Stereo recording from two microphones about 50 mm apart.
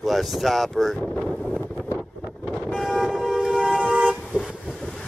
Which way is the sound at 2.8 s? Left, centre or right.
Centre.